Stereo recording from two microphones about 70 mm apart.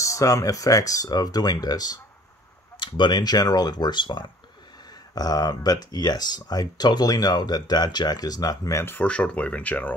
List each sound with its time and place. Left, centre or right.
0.0 s speech: left
3.0 s speech: left
5.1 s speech: left
8.7 s speech: left
9.0 s speech: centre